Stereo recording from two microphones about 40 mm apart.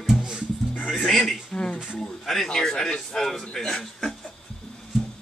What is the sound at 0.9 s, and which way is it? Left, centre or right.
A man's voice, centre.